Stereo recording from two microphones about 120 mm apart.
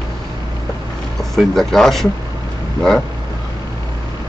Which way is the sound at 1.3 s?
5° left (ahead or behind).